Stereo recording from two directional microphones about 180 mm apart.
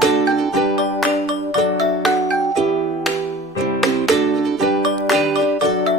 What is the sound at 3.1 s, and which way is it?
Music, 15° left (ahead or behind).